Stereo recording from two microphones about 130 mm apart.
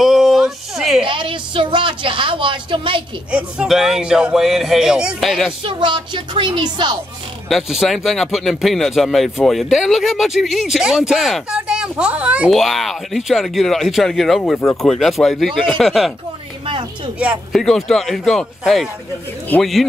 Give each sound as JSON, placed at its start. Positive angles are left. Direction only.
{"t": 0.0, "sound": "a sound", "side_deg": 0}
{"t": 1.0, "sound": "a sound", "side_deg": -40}
{"t": 3.3, "sound": "speech", "side_deg": -10}
{"t": 5.6, "sound": "speech", "side_deg": -40}
{"t": 7.4, "sound": "speech", "side_deg": 0}
{"t": 12.4, "sound": "speech", "side_deg": 0}
{"t": 17.5, "sound": "speech", "side_deg": 0}